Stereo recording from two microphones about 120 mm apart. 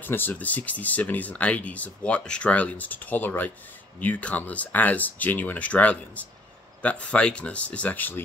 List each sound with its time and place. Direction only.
0.0 s speech: 15° left (ahead or behind)